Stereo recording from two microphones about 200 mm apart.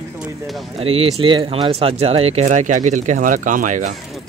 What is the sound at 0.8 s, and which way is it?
Speech, 30° right (ahead or behind).